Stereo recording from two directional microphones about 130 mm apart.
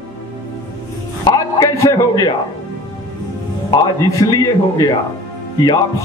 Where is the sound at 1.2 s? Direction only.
30° left (ahead or behind).